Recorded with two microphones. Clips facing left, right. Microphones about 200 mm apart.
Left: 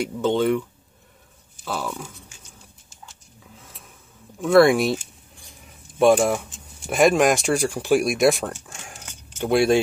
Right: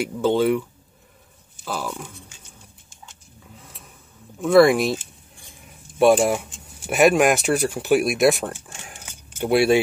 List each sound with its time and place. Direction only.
0.0 s speech: 5° right (ahead or behind)
3.5 s a sound: centre (ahead or behind)
4.4 s keys jangling: centre (ahead or behind)
6.9 s speech: 5° right (ahead or behind)